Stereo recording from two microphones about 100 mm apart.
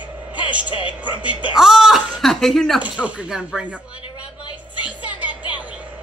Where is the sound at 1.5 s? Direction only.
5° right (ahead or behind).